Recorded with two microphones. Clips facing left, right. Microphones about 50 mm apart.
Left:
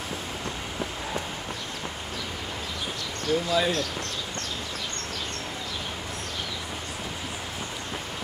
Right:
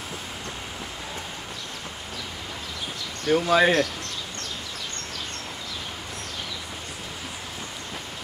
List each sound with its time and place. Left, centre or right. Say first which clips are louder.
3.3 s speech: right 5 dB; right